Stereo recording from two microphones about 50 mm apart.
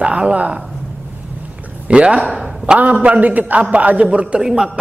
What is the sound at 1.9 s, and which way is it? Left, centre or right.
A man's voice, right.